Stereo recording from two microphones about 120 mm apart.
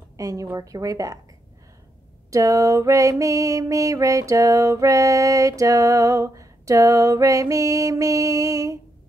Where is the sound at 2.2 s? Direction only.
25° right (ahead or behind).